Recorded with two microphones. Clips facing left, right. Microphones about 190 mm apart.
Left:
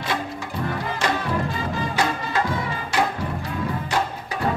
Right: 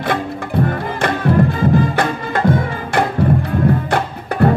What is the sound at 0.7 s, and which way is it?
Music, 55° right (ahead or behind).